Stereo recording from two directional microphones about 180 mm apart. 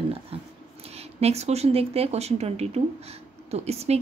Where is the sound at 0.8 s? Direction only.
35° right (ahead or behind).